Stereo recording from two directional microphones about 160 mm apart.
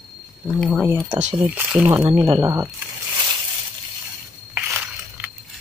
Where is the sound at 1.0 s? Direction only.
45° right (ahead or behind).